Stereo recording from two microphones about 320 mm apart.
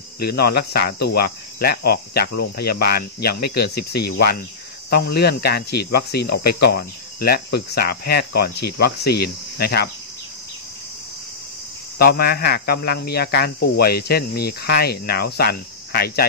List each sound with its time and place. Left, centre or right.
0.2 s speech: left
12.0 s speech: left